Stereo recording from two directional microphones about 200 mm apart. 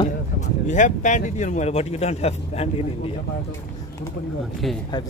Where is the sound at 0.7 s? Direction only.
40° left (ahead or behind).